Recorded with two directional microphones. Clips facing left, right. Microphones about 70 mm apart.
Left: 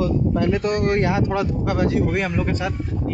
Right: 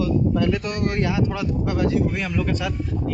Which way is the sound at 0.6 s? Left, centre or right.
Left.